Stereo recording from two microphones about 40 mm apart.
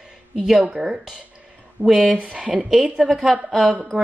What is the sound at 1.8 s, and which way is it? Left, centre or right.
Speech, centre.